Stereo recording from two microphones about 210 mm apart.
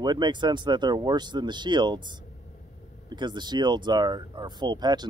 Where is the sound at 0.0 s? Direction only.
20° right (ahead or behind).